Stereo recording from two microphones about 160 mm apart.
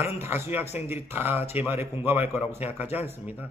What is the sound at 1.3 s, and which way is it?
Speech, 40° left (ahead or behind).